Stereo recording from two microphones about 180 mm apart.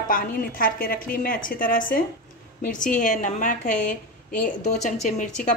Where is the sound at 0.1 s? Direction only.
50° left (ahead or behind).